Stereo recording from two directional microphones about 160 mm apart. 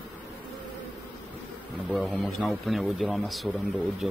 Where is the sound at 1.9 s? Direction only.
Centre (ahead or behind).